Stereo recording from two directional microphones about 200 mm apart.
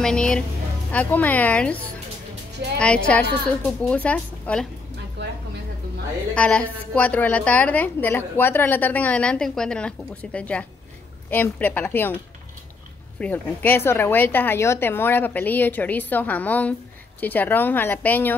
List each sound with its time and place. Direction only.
0.0 s a woman's voice: 5° left (ahead or behind)
2.8 s a woman's voice: 5° left (ahead or behind)
5.2 s a sound: 60° right (ahead or behind)
6.3 s a woman's voice: 5° left (ahead or behind)
13.2 s a woman's voice: 10° left (ahead or behind)